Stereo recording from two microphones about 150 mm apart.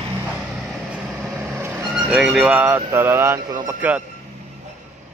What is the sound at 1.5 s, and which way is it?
Vehicle, 15° right (ahead or behind).